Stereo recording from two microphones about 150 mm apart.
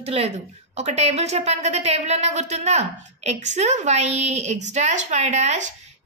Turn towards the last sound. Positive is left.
turn(degrees=-50)  # may be behind; listen again after turning